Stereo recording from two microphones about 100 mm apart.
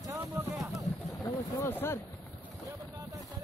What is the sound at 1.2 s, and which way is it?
Speech, 20° left (ahead or behind).